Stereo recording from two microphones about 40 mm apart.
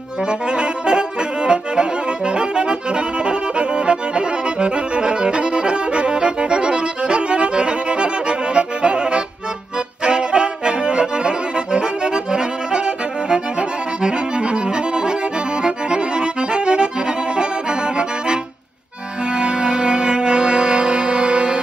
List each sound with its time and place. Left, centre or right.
0.2 s accordion: right
19.2 s music: right